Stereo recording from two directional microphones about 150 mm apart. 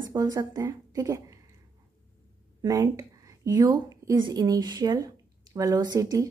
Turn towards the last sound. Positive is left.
turn(degrees=-25)  # may be behind; listen again after turning